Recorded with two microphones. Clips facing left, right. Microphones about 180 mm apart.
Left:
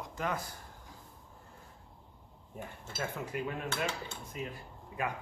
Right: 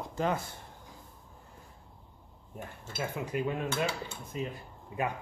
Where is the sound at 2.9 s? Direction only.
15° right (ahead or behind).